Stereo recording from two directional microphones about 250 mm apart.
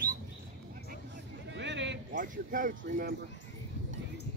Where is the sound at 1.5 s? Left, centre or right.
Right.